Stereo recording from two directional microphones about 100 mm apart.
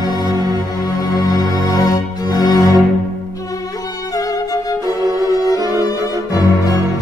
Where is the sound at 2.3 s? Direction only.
45° left (ahead or behind).